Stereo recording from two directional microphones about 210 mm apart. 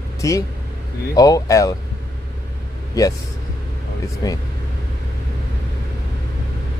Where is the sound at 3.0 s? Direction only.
15° left (ahead or behind).